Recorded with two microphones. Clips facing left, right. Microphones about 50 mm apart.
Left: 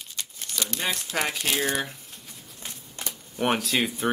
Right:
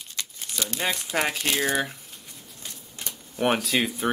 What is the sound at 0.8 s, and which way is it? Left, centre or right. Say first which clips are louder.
Speech: right 2 dB; centre.